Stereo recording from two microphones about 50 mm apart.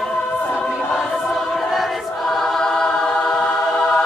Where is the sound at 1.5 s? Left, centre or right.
Centre.